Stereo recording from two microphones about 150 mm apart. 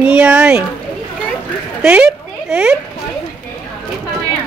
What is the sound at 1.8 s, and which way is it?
Speech, 10° right (ahead or behind).